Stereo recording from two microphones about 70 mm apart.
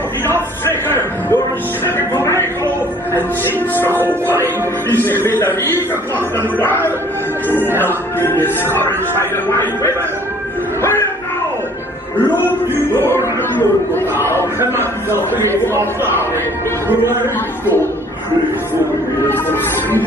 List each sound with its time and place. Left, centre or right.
0.7 s a sound: left
3.4 s speech: left
6.6 s music: left
7.8 s speech: left
10.8 s speech: left
13.0 s speech: left
16.9 s speech: right
19.2 s music: left